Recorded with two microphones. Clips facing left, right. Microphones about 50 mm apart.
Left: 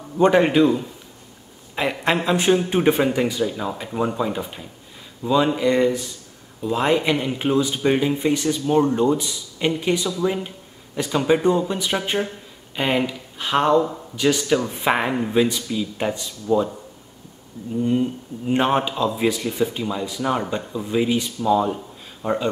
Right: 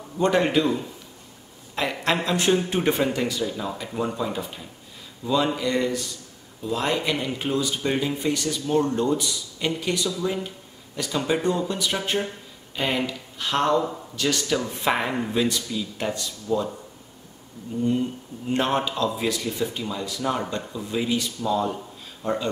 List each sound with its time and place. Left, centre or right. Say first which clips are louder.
0.2 s speech: left 5 dB; left
13.7 s a man's voice: left 5 dB; centre
14.1 s speech: left 6 dB; centre
18.5 s speech: left 4 dB; centre